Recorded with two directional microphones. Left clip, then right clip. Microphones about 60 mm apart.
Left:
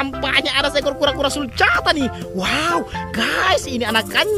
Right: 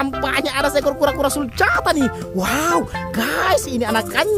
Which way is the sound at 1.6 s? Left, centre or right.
Right.